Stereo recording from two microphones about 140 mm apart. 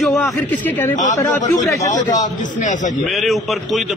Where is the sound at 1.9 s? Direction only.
60° left (ahead or behind).